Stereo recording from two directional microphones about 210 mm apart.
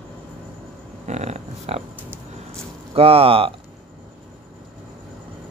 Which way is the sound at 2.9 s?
25° right (ahead or behind).